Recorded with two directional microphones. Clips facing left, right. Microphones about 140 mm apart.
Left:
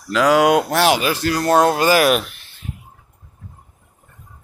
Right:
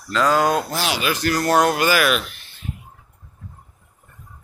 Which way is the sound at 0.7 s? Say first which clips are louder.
Left 9 dB; 65° left (ahead or behind).